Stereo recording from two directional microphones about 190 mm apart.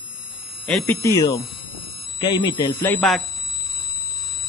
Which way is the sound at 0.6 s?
5° left (ahead or behind).